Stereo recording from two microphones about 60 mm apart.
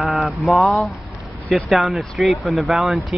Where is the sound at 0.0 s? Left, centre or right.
Centre.